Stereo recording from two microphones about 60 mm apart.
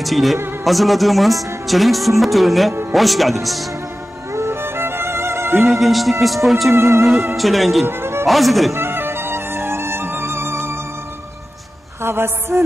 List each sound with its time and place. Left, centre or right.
0.0 s speech: centre
4.3 s music: right
5.6 s speech: centre
6.7 s music: right
7.3 s speech: centre
7.8 s music: right
8.3 s speech: centre
8.7 s music: right
12.0 s a man's voice: right